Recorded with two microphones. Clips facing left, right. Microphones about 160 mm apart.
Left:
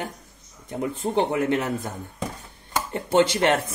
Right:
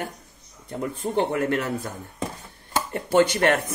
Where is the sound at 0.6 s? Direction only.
15° left (ahead or behind).